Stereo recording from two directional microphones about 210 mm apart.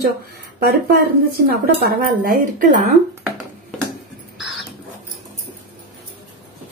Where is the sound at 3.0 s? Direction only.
Centre (ahead or behind).